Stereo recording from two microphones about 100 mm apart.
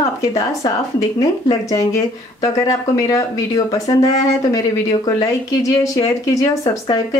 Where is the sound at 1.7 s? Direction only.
35° left (ahead or behind).